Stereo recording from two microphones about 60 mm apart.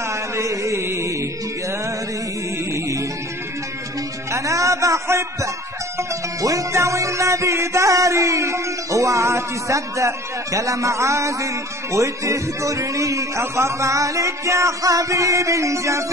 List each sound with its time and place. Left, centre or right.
0.1 s chant: right
2.7 s music: right
4.3 s speech: right
6.4 s music: right